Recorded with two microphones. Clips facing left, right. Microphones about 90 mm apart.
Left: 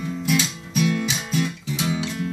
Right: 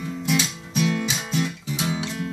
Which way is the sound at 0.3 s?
20° right (ahead or behind).